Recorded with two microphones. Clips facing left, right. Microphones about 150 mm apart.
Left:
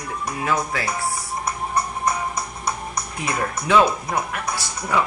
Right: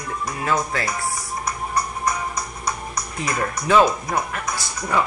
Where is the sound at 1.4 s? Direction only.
30° left (ahead or behind).